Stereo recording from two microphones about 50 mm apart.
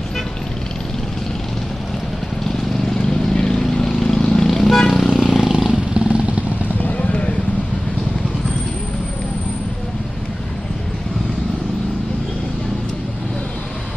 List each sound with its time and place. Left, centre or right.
3.0 s vehicle: centre
5.1 s vehicle: centre
7.0 s vehicle: left